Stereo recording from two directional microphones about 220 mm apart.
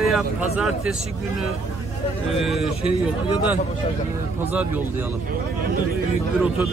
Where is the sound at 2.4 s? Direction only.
Centre (ahead or behind).